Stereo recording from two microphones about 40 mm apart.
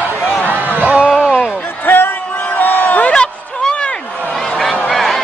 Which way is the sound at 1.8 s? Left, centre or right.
Left.